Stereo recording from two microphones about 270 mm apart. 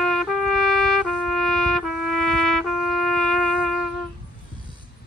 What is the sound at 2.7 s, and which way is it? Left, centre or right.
Music, right.